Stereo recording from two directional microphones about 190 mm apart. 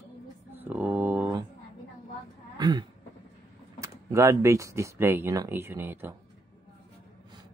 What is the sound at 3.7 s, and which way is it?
Speech, 15° right (ahead or behind).